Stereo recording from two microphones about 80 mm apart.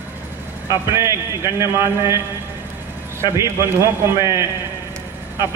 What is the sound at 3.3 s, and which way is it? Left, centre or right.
Speech, right.